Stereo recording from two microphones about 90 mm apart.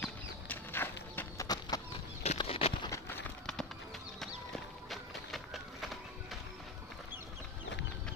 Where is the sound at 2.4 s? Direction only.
90° left.